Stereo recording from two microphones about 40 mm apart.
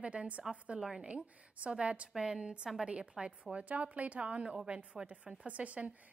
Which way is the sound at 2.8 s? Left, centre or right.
Right.